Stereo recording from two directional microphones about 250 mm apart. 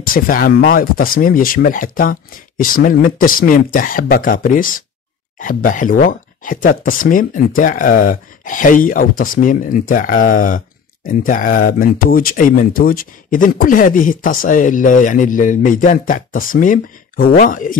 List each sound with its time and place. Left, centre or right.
0.0 s speech: left